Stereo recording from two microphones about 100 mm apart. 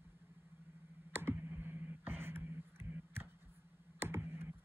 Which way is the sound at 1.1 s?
20° right (ahead or behind).